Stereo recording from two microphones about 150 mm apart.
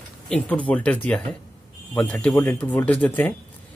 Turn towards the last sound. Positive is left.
turn(degrees=10)  # may be behind; listen again after turning